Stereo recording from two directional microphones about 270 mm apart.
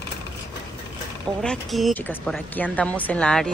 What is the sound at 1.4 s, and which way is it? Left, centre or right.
Speech, centre.